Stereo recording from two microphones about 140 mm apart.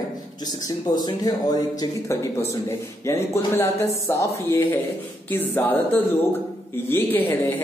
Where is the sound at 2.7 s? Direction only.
20° left (ahead or behind).